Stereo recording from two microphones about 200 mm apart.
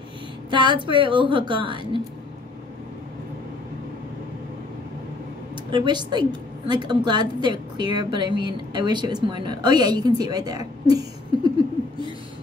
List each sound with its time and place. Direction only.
0.5 s a woman's voice: 25° right (ahead or behind)
5.7 s a woman's voice: 20° right (ahead or behind)